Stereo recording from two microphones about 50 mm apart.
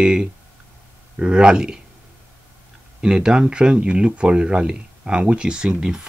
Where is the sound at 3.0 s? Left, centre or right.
Centre.